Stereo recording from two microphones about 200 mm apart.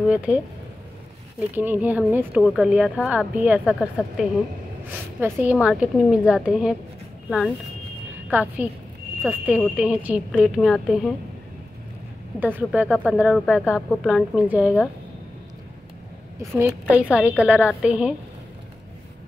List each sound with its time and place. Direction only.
0.1 s a woman's voice: 5° right (ahead or behind)
1.5 s a woman's voice: 10° right (ahead or behind)
5.2 s a woman's voice: 5° right (ahead or behind)
12.5 s a woman's voice: 5° right (ahead or behind)
16.3 s a woman's voice: 10° right (ahead or behind)